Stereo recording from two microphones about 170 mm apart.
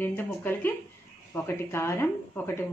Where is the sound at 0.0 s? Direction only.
10° left (ahead or behind).